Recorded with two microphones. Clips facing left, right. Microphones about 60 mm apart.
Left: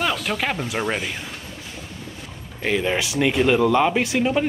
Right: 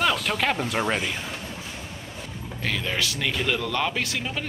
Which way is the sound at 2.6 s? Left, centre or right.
Centre.